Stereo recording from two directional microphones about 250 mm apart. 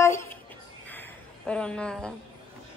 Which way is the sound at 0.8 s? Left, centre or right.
Centre.